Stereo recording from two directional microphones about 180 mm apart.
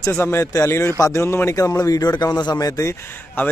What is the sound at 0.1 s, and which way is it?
A man's voice, 15° left (ahead or behind).